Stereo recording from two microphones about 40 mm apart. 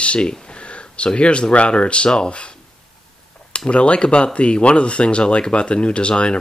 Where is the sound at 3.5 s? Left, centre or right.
Left.